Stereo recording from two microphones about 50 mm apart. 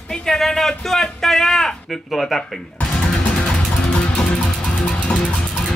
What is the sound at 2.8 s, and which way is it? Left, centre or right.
Music, left.